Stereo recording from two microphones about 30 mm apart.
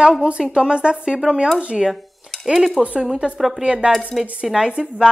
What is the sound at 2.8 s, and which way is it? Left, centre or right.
Speech, centre.